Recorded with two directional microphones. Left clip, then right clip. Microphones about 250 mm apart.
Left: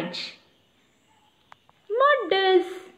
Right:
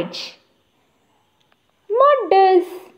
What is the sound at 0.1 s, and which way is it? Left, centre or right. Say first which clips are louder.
Speech: right 3 dB; centre.